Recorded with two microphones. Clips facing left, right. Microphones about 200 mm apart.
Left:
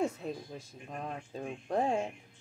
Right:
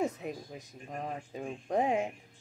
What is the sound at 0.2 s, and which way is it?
Speech, 15° right (ahead or behind).